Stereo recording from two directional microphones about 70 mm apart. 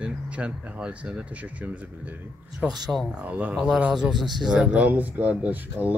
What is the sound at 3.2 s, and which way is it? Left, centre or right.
Speech, right.